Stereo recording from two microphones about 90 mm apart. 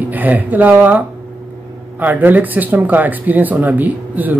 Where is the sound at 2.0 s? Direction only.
20° right (ahead or behind).